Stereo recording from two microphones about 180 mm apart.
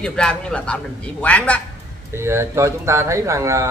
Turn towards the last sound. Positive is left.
turn(degrees=-15)  # may be behind; listen again after turning